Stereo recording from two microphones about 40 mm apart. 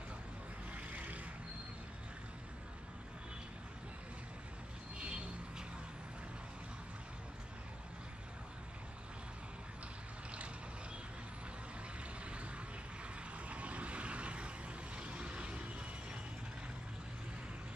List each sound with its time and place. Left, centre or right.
0.7 s vehicle: right
4.9 s vehicle: right
12.3 s vehicle: right